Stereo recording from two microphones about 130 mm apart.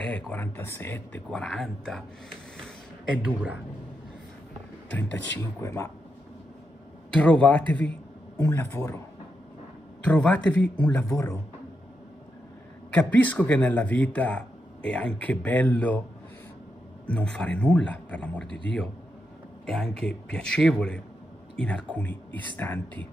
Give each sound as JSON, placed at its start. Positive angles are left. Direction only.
{"t": 0.3, "sound": "speech", "side_deg": 15}
{"t": 1.4, "sound": "speech", "side_deg": 0}
{"t": 3.2, "sound": "a man's voice", "side_deg": -10}
{"t": 4.9, "sound": "a man's voice", "side_deg": 15}
{"t": 7.2, "sound": "a man's voice", "side_deg": 10}
{"t": 10.0, "sound": "speech", "side_deg": 10}
{"t": 11.1, "sound": "a man's voice", "side_deg": 20}
{"t": 12.9, "sound": "speech", "side_deg": 10}
{"t": 17.0, "sound": "speech", "side_deg": 10}